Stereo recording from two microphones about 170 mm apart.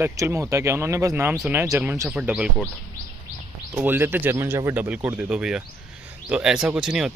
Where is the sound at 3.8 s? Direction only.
10° right (ahead or behind).